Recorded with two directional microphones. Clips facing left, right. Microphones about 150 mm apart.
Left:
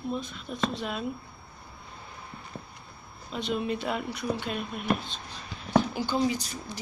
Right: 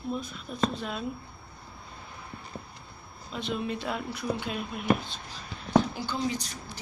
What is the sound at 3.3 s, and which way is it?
A woman's voice, centre (ahead or behind).